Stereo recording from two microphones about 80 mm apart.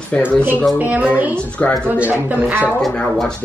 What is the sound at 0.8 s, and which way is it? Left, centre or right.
Speech, centre.